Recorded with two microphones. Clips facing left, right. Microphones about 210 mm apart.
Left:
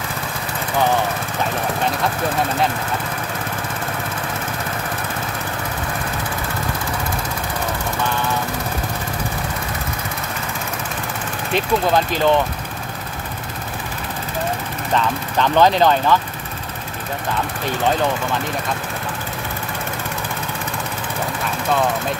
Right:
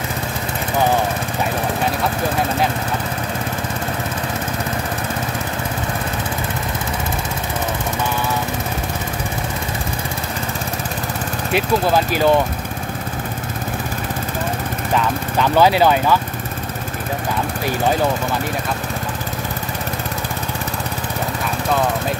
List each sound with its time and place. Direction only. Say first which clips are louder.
11.5 s speech: right 1 dB; 10° right (ahead or behind)
15.0 s speech: even; 5° right (ahead or behind)